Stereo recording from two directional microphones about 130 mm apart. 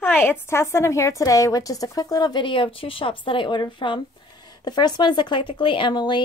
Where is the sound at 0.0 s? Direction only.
15° left (ahead or behind).